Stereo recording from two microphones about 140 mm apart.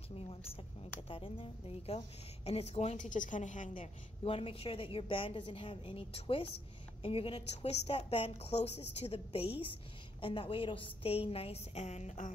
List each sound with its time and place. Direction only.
1.0 s a woman's voice: 40° left (ahead or behind); by 3.9 s 65° left (ahead or behind)
4.2 s a woman's voice: 40° left (ahead or behind)